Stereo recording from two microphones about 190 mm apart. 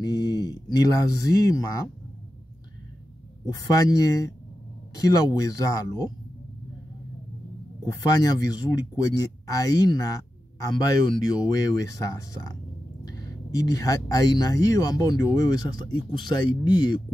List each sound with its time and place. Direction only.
0.0 s a sound: 20° left (ahead or behind)
0.7 s speech: 20° left (ahead or behind)
3.4 s speech: 20° left (ahead or behind)
7.8 s speech: 20° left (ahead or behind)